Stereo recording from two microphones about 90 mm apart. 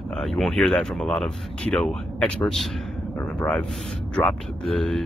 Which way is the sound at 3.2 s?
20° left (ahead or behind).